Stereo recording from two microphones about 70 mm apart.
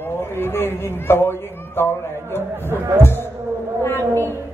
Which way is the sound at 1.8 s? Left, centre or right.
Left.